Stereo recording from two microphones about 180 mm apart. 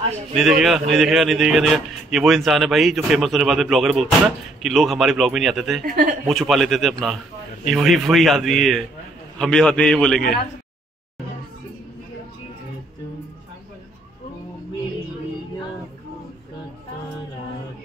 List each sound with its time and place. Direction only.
0.4 s a man's voice: centre (ahead or behind)
5.9 s speech: 50° right (ahead or behind)
6.2 s a man's voice: centre (ahead or behind)